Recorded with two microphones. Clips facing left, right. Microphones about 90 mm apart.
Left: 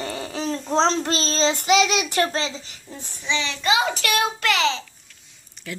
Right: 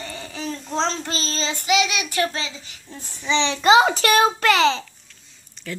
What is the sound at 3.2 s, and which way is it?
A child's voice, 25° right (ahead or behind).